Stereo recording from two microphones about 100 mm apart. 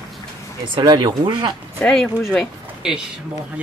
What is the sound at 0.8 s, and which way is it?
Speech, 45° right (ahead or behind).